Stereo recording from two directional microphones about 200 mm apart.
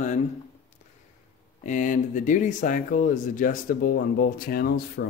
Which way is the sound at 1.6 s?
40° left (ahead or behind).